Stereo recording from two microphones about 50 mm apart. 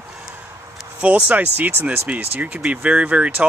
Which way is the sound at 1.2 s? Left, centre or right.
Right.